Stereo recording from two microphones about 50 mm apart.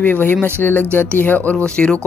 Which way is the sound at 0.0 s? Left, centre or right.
Left.